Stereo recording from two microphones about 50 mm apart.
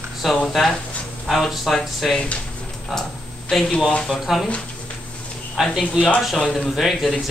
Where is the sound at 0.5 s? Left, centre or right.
Centre.